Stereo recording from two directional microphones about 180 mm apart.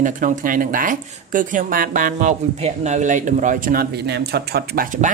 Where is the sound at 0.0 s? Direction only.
50° right (ahead or behind).